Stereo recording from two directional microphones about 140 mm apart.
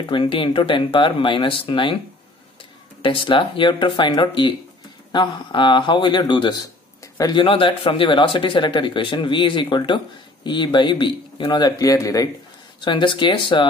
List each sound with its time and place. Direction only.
0.0 s speech: 40° left (ahead or behind)
3.0 s speech: 35° left (ahead or behind)
12.8 s speech: 35° left (ahead or behind)